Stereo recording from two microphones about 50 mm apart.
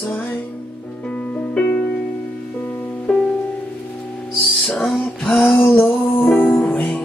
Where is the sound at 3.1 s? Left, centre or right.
Centre.